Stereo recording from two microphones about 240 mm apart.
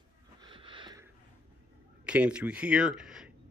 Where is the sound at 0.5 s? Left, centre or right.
Centre.